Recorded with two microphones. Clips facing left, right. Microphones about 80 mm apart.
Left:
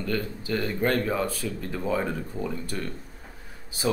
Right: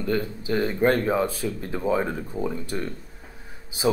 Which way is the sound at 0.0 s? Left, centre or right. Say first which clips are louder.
Right 3 dB; right.